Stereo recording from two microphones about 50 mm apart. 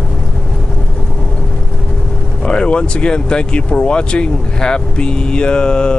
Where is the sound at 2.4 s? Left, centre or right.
Centre.